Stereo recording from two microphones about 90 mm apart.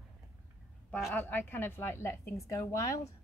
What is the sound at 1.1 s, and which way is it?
A woman's voice, 20° left (ahead or behind).